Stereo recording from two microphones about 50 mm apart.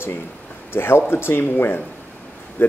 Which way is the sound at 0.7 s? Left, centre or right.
Left.